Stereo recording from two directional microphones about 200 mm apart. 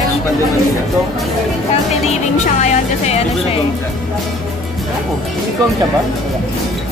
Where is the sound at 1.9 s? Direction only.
35° left (ahead or behind).